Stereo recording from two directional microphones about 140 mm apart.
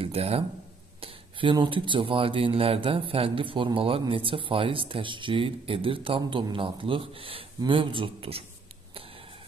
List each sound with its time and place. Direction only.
0.0 s speech: 45° right (ahead or behind)